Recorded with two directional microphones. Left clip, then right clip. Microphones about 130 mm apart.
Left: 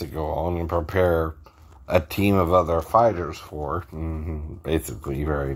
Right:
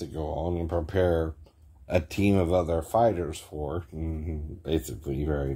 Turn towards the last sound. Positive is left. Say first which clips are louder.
# left 4 dB
turn(degrees=0)  # may be behind; listen again after turning